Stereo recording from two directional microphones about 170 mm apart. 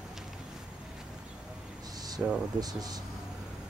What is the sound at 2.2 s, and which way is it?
Speech, 5° right (ahead or behind).